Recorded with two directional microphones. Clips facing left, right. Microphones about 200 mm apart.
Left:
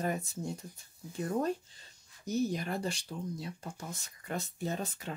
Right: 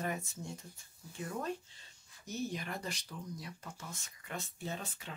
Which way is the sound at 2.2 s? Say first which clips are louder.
Left 7 dB; 40° left (ahead or behind).